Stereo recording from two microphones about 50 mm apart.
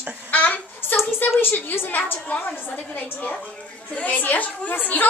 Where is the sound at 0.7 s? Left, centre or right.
Left.